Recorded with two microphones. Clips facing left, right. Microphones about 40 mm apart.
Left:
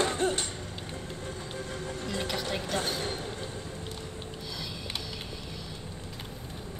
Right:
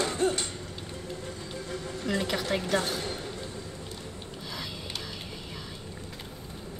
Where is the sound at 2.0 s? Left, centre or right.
Right.